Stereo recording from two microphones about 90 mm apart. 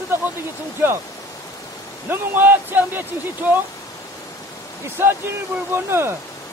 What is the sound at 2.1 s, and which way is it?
Speech, 25° right (ahead or behind).